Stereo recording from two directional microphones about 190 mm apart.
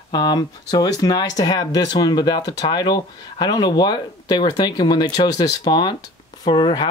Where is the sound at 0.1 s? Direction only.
20° left (ahead or behind).